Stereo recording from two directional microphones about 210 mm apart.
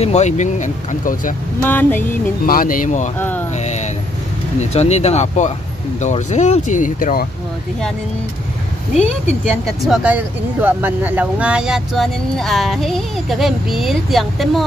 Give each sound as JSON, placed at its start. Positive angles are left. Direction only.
{"t": 0.0, "sound": "speech", "side_deg": 30}
{"t": 1.6, "sound": "speech", "side_deg": 10}
{"t": 2.4, "sound": "speech", "side_deg": 45}
{"t": 3.2, "sound": "speech", "side_deg": 10}
{"t": 3.5, "sound": "vehicle", "side_deg": 35}
{"t": 4.6, "sound": "speech", "side_deg": 30}
{"t": 8.9, "sound": "speech", "side_deg": 30}
{"t": 9.5, "sound": "speech", "side_deg": 0}